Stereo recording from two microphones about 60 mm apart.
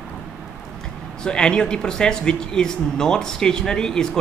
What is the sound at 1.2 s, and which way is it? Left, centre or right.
Speech, centre.